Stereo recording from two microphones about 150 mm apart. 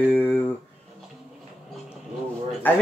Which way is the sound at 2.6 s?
10° left (ahead or behind).